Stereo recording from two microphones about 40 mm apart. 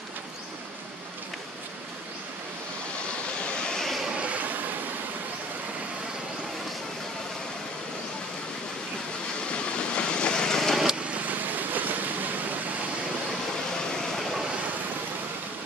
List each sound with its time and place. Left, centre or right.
3.3 s vehicle: left
4.2 s vehicle: right
9.8 s vehicle: left
11.1 s vehicle: right